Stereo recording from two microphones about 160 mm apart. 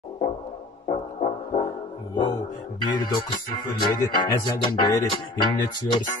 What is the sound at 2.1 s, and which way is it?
Music, 30° left (ahead or behind).